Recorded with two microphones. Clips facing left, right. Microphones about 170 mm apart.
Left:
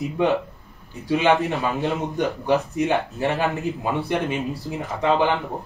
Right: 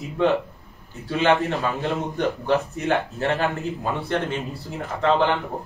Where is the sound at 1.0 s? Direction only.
15° left (ahead or behind).